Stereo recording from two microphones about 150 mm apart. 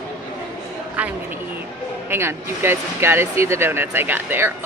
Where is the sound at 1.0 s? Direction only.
10° right (ahead or behind).